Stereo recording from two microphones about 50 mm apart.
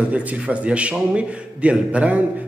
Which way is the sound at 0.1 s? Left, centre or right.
Right.